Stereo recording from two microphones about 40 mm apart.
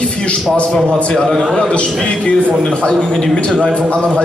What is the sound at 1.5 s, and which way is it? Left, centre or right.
A man's voice, left.